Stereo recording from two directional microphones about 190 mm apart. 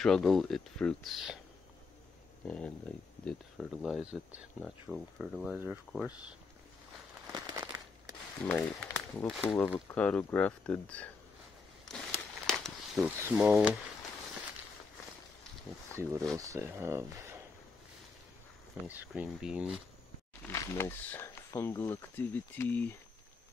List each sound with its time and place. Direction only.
0.0 s speech: centre (ahead or behind)
2.4 s speech: 5° left (ahead or behind)
7.3 s a sound: 20° right (ahead or behind)
8.4 s speech: 10° left (ahead or behind)
12.1 s a sound: 5° left (ahead or behind)
16.0 s speech: 15° right (ahead or behind)
18.9 s speech: 5° right (ahead or behind)
20.4 s speech: 15° left (ahead or behind)